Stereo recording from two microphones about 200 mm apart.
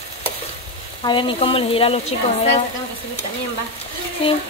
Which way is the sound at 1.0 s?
25° left (ahead or behind).